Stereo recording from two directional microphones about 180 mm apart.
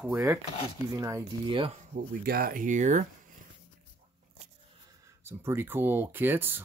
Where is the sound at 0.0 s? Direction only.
15° right (ahead or behind).